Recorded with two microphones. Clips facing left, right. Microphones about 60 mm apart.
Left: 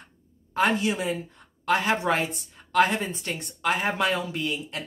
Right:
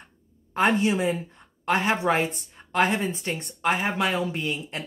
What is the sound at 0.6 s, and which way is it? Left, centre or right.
Speech, right.